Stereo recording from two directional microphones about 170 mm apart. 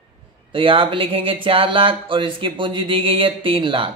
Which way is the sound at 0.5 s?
30° right (ahead or behind).